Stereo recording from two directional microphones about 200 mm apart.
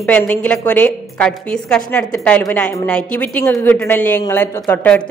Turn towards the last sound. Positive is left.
turn(degrees=10)  # may be behind; listen again after turning